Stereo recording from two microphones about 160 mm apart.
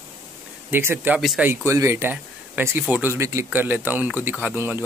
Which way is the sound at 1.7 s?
15° right (ahead or behind).